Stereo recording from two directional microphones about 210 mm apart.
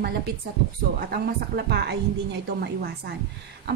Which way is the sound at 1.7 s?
50° right (ahead or behind).